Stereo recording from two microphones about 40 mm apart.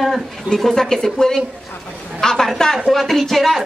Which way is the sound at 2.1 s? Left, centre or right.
Centre.